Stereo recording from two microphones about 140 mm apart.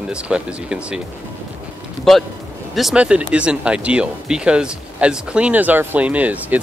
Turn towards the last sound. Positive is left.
turn(degrees=-10)  # may be behind; listen again after turning